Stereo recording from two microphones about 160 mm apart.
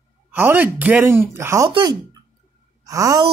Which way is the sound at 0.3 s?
10° right (ahead or behind).